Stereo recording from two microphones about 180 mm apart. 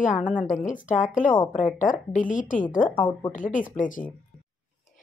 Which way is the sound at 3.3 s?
45° left (ahead or behind).